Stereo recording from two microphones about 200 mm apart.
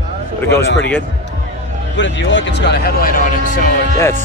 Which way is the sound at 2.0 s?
60° left (ahead or behind).